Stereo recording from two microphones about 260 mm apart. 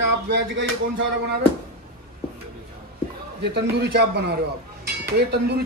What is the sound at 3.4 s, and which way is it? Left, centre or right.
Speech, right.